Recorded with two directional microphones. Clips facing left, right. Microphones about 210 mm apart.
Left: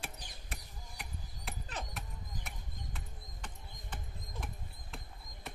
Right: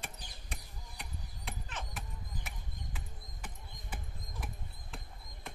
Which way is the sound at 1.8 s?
40° left (ahead or behind).